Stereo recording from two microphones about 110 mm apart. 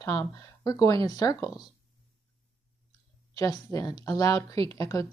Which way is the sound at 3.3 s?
30° left (ahead or behind).